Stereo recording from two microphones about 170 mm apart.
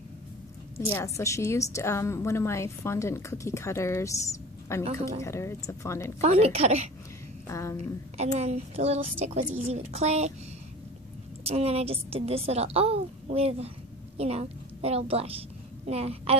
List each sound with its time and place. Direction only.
0.7 s a woman's voice: 15° left (ahead or behind)
6.2 s a woman's voice: 35° right (ahead or behind)
7.4 s a woman's voice: 20° left (ahead or behind)
8.2 s a woman's voice: 40° right (ahead or behind)
11.4 s a woman's voice: 35° right (ahead or behind)